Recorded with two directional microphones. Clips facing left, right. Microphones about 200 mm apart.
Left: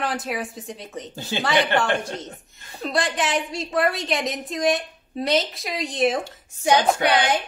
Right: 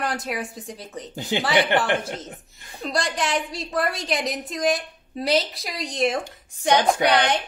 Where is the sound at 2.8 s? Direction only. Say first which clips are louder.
Left 1 dB; centre (ahead or behind).